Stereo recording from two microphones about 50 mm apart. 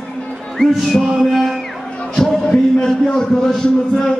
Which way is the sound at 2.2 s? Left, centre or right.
Centre.